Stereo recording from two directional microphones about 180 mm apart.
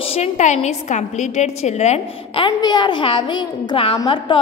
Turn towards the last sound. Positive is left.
turn(degrees=25)  # may be behind; listen again after turning